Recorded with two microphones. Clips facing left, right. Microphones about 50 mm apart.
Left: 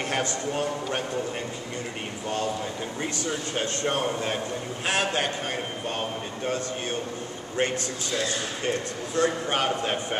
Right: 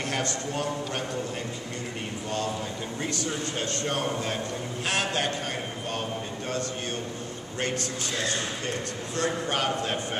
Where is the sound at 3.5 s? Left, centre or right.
Left.